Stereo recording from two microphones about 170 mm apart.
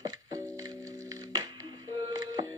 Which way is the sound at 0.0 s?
20° right (ahead or behind).